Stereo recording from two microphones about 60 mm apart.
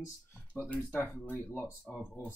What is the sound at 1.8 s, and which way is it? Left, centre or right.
Speech, centre.